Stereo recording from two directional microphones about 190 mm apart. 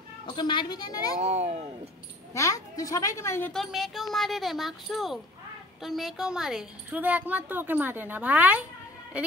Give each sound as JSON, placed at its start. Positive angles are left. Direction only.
{"t": 0.3, "sound": "a woman's voice", "side_deg": 25}
{"t": 1.2, "sound": "speech", "side_deg": -35}
{"t": 2.3, "sound": "a woman's voice", "side_deg": 15}